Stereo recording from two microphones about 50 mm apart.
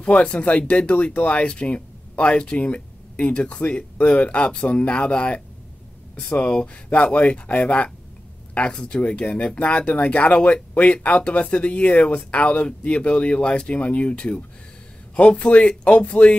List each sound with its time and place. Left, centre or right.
0.0 s speech: left